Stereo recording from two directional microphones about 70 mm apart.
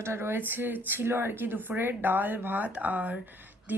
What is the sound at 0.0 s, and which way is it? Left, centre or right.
Speech, right.